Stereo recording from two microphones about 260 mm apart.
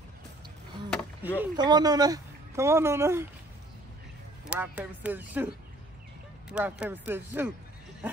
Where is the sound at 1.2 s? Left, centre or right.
Centre.